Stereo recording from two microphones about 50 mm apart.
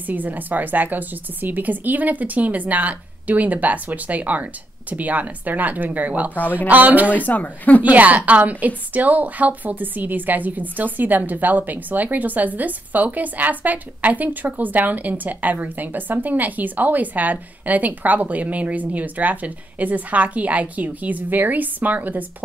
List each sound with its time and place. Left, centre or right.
0.0 s a woman's voice: right
7.2 s speech: left
7.8 s a woman's voice: right